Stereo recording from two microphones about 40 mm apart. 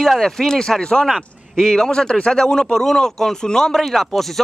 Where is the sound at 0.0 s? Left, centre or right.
Centre.